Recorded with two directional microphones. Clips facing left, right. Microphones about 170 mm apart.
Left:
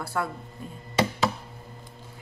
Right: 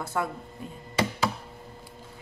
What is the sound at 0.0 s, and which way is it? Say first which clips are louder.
Speech: even; 20° right (ahead or behind).